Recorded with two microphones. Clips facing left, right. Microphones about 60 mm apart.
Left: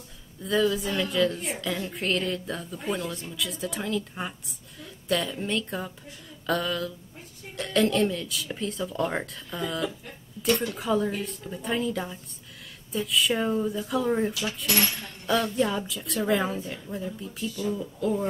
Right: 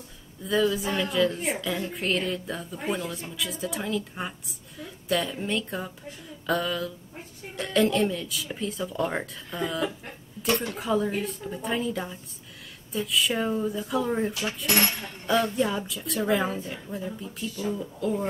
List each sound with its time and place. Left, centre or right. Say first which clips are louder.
0.4 s a woman's voice: even; centre
10.4 s speech: left 1 dB; right
10.7 s a woman's voice: even; centre
14.7 s speech: right 2 dB; right
15.0 s a woman's voice: right 1 dB; centre